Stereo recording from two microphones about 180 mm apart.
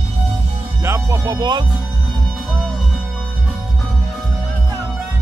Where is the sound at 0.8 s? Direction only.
15° right (ahead or behind).